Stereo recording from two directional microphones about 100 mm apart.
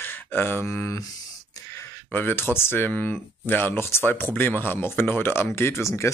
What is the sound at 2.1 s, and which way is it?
Speech, 20° left (ahead or behind).